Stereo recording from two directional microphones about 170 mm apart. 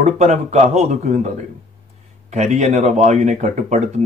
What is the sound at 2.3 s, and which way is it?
Speech, 45° right (ahead or behind).